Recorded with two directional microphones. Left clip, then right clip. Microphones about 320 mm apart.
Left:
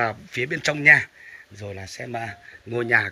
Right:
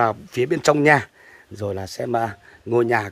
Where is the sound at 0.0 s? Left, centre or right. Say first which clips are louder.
Right 5 dB; centre.